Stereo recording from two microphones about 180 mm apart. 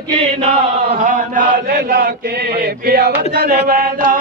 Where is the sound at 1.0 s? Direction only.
45° right (ahead or behind).